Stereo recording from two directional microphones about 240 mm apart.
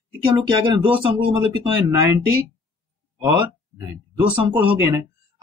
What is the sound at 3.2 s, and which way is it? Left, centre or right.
Speech, centre.